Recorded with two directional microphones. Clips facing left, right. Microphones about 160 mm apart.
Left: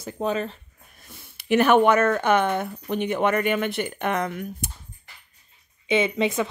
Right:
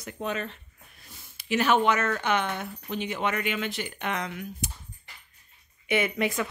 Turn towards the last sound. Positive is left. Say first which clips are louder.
# left 4 dB
turn(degrees=20)  # may be behind; listen again after turning